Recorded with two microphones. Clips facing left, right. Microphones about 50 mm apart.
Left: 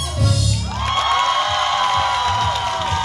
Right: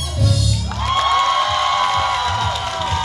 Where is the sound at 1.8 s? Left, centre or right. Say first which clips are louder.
Even; centre.